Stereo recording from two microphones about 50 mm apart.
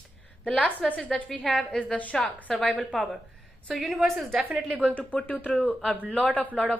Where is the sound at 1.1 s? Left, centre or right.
Centre.